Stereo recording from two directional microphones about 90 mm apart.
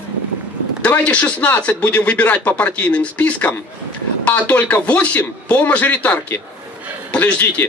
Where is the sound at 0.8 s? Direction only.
15° left (ahead or behind).